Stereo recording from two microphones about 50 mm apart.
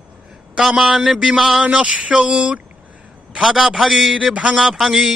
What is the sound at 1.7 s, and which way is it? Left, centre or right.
Speech, right.